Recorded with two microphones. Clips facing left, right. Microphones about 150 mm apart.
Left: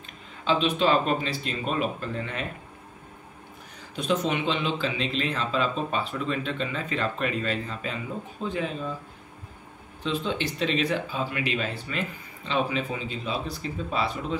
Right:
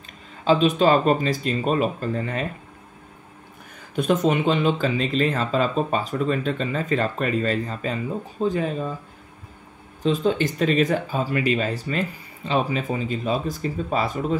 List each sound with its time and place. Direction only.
0.5 s speech: 45° right (ahead or behind)
3.9 s speech: 50° right (ahead or behind)
10.0 s speech: 40° right (ahead or behind)